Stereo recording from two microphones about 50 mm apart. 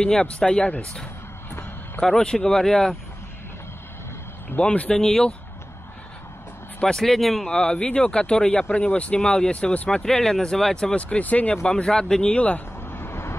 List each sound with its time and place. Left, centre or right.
0.0 s speech: centre
2.0 s speech: centre
4.6 s speech: left
4.9 s speech: centre
6.8 s speech: centre
7.4 s speech: centre
11.0 s speech: left
11.6 s speech: centre
12.4 s speech: left
12.8 s vehicle: left